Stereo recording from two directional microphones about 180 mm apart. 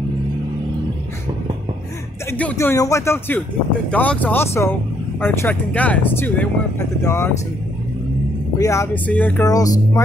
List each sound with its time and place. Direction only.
2.3 s speech: 10° left (ahead or behind)
8.5 s speech: 15° left (ahead or behind)
9.4 s speech: 20° left (ahead or behind)